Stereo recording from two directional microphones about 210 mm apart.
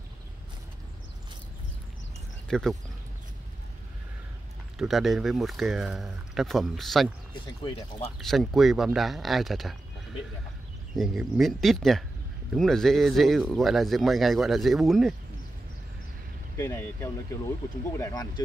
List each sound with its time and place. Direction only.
2.4 s speech: centre (ahead or behind)
4.7 s speech: centre (ahead or behind)
8.2 s speech: centre (ahead or behind)
11.0 s speech: centre (ahead or behind)
16.5 s speech: 10° left (ahead or behind)